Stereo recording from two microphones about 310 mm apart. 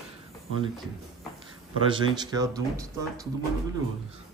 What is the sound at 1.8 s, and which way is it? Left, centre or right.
A man's voice, centre.